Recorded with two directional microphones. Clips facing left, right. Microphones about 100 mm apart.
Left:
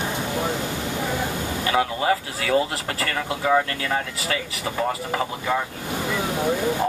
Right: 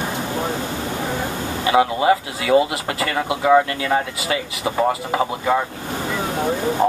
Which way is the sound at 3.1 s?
25° right (ahead or behind).